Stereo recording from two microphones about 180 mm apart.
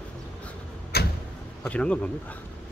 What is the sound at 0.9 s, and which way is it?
Vehicle, 60° left (ahead or behind).